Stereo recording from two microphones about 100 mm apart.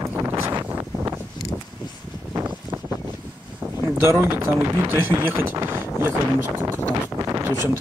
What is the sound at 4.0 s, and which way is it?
Speech, 25° right (ahead or behind).